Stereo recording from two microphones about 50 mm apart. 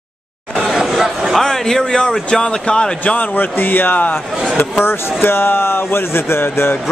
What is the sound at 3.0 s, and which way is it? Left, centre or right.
A man's voice, left.